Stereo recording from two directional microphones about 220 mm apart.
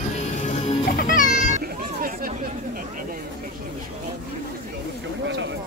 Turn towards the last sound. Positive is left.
turn(degrees=-55)  # may be behind; listen again after turning